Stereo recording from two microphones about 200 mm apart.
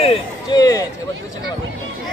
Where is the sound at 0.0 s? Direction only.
25° left (ahead or behind).